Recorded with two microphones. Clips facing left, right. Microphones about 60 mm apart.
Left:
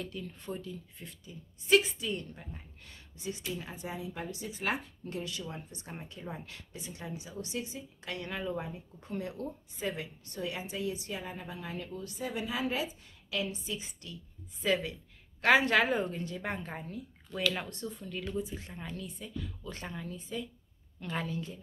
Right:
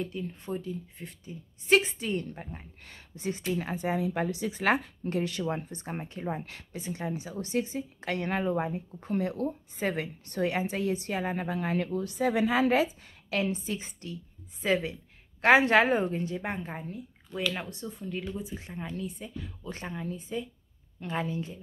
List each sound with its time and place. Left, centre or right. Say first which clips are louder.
0.0 s a woman's voice: right 5 dB; right
13.4 s a woman's voice: right 6 dB; right
14.6 s speech: right 3 dB; right
16.4 s speech: right 3 dB; centre